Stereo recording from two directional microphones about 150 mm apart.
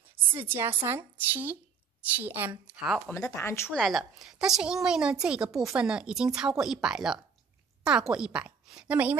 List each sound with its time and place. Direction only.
0.4 s speech: 15° right (ahead or behind)
3.1 s speech: 20° left (ahead or behind)
3.7 s a woman's voice: centre (ahead or behind)
5.5 s speech: 20° right (ahead or behind)
5.8 s a woman's voice: 5° right (ahead or behind)